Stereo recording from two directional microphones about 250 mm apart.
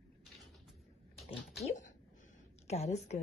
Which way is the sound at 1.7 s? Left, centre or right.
Left.